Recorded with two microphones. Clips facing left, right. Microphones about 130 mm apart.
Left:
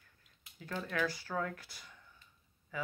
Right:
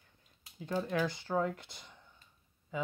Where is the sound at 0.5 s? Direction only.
20° right (ahead or behind).